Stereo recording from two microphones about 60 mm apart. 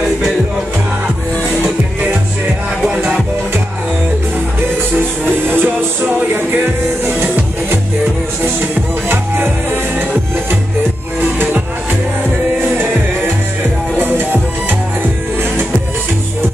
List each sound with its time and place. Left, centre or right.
2.8 s music: centre
4.9 s music: right
6.0 s music: right
9.1 s music: right
11.1 s music: right
13.9 s music: right